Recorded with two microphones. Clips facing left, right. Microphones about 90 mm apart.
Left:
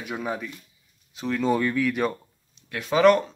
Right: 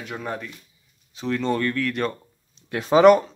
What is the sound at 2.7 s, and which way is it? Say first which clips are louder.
Speech: right 5 dB; 30° right (ahead or behind).